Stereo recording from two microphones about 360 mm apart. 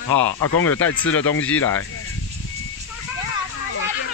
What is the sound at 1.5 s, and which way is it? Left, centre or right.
Speech, centre.